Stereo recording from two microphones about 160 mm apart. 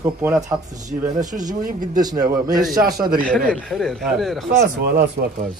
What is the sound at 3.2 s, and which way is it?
A man's voice, 5° left (ahead or behind).